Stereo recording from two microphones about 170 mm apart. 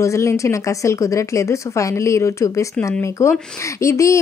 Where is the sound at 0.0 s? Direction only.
15° left (ahead or behind).